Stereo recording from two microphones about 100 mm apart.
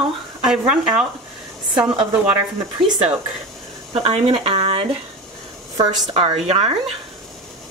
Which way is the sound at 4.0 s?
80° right.